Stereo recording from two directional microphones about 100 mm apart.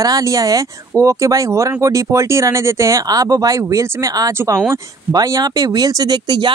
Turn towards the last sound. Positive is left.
turn(degrees=-45)  # may be behind; listen again after turning